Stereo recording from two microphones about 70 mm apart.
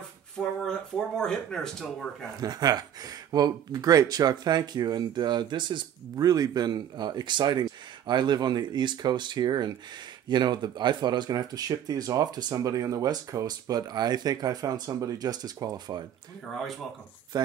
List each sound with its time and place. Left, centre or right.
0.4 s speech: centre
2.4 s speech: right
14.9 s speech: right
16.4 s speech: centre